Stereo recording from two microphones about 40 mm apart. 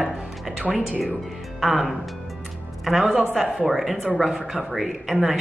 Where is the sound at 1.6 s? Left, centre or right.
Centre.